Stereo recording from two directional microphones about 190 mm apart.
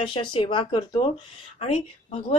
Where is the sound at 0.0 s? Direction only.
25° left (ahead or behind).